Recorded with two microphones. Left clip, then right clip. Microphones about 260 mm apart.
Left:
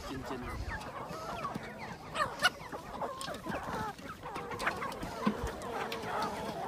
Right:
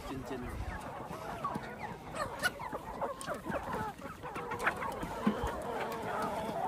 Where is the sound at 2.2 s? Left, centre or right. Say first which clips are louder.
Left 5 dB; centre.